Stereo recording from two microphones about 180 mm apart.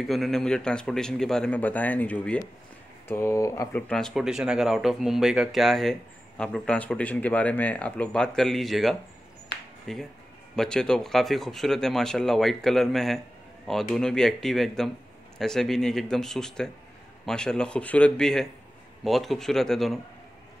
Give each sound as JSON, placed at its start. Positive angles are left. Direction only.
{"t": 0.0, "sound": "speech", "side_deg": 0}
{"t": 9.5, "sound": "a sound", "side_deg": 65}
{"t": 9.9, "sound": "speech", "side_deg": 0}